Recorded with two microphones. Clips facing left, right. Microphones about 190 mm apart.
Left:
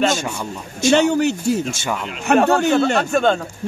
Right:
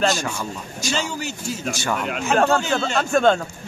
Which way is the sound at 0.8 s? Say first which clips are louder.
Left 12 dB; 60° left (ahead or behind).